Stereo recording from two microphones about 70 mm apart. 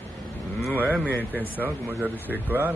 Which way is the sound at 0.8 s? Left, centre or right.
Right.